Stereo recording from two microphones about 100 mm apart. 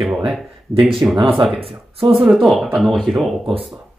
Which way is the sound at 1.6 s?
65° right (ahead or behind).